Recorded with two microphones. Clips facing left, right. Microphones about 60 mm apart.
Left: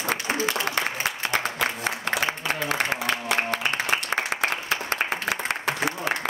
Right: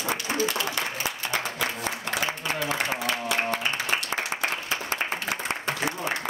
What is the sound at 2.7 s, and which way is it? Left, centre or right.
Music, left.